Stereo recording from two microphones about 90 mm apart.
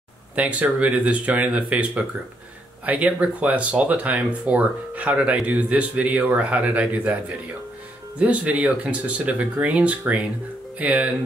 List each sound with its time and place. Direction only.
0.4 s speech: 15° right (ahead or behind)
8.2 s speech: 15° right (ahead or behind)